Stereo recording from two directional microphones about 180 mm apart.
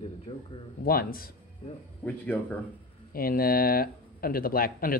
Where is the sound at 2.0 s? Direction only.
10° left (ahead or behind).